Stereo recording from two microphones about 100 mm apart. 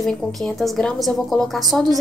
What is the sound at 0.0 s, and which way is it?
A woman's voice, centre (ahead or behind).